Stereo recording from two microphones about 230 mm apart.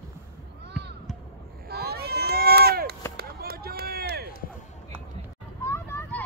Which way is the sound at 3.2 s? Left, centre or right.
Right.